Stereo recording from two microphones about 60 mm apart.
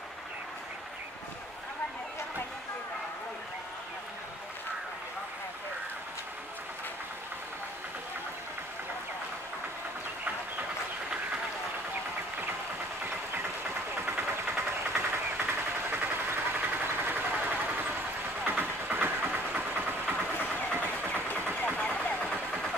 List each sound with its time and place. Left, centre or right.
14.0 s a sound: right
15.0 s vehicle: right
21.7 s vehicle: centre